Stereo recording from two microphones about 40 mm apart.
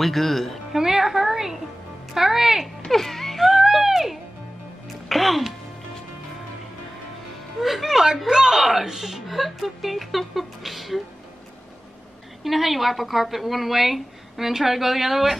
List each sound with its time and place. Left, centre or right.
0.0 s a woman's voice: centre
0.7 s a woman's voice: centre
2.9 s music: centre
3.4 s music: centre
5.0 s speech: centre
7.6 s a woman's voice: centre
8.3 s a woman's voice: centre
12.4 s a woman's voice: centre